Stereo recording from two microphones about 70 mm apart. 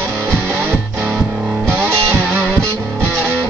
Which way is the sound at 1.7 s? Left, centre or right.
Right.